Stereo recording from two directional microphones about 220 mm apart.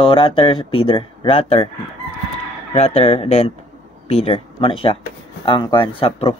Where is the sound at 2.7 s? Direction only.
25° left (ahead or behind).